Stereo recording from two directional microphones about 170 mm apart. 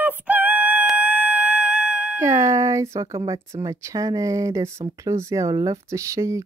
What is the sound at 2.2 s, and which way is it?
Speech, 15° right (ahead or behind).